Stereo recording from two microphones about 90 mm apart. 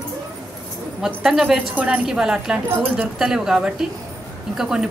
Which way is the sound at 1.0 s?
5° right (ahead or behind).